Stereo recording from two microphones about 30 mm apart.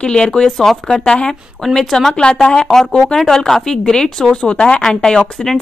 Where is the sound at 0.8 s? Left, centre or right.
Left.